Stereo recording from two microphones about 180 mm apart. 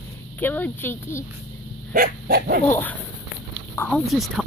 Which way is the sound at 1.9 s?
55° right (ahead or behind).